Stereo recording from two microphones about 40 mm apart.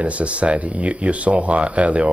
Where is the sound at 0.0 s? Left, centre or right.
Right.